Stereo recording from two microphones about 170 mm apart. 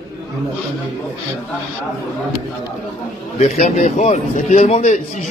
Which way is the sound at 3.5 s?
45° left (ahead or behind).